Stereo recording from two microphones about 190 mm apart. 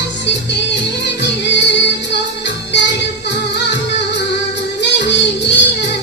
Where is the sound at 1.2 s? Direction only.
65° left (ahead or behind).